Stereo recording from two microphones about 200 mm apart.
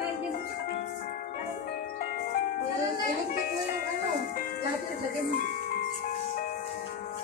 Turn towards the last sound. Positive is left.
turn(degrees=40)  # may be behind; listen again after turning